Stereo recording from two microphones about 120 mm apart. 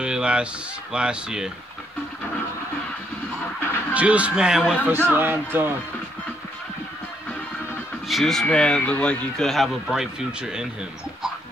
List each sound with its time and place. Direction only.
0.0 s a sound: 10° right (ahead or behind)
0.9 s a man's voice: 5° right (ahead or behind)
3.9 s a man's voice: 10° right (ahead or behind)
4.9 s speech: 20° right (ahead or behind)
8.1 s speech: centre (ahead or behind)